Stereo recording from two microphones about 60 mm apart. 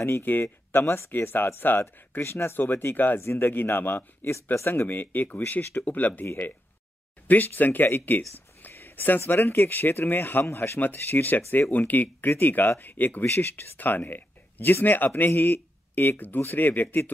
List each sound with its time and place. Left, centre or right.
0.2 s speech: left
7.2 s speech: left
8.6 s a sound: left
9.3 s speech: left
13.2 s speech: left
13.5 s speech: left